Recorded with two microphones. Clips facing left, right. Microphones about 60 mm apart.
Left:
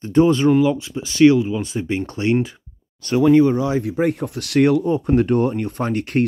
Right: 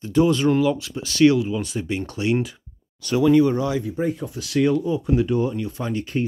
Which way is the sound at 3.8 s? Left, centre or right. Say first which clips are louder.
Left 5 dB; left.